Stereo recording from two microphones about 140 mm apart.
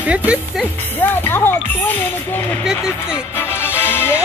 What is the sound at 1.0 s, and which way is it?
Speech, 15° left (ahead or behind).